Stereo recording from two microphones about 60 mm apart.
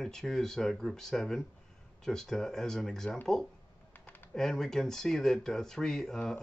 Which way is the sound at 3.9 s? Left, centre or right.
Left.